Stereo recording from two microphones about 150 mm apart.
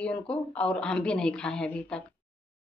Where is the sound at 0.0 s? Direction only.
5° left (ahead or behind).